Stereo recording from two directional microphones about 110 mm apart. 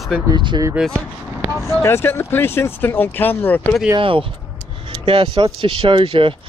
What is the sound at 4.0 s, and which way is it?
Speech, 50° right (ahead or behind).